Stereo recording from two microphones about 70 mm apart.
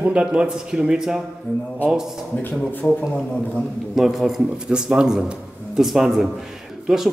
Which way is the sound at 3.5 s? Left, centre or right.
Centre.